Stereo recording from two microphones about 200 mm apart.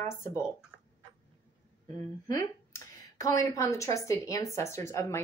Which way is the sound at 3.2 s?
15° left (ahead or behind).